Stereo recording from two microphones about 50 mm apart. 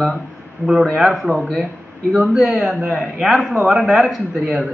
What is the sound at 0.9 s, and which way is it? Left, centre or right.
A woman's voice, centre.